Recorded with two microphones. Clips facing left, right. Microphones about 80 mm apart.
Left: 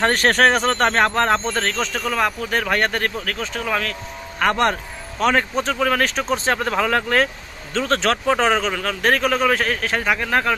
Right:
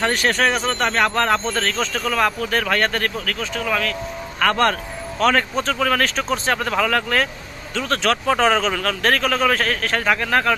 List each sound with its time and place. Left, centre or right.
0.0 s speech: left; by 10.5 s centre